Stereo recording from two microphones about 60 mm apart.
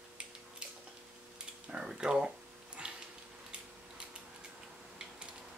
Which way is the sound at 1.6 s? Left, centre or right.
Centre.